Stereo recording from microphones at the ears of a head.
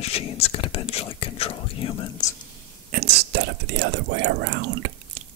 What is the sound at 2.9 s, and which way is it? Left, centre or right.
Whispering, right.